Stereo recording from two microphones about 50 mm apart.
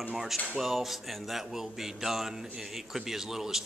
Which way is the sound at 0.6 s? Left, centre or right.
Centre.